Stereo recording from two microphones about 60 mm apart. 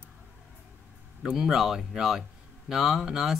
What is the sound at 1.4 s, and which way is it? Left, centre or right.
Speech, centre.